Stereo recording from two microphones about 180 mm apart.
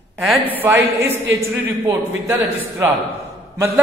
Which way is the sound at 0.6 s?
10° right (ahead or behind).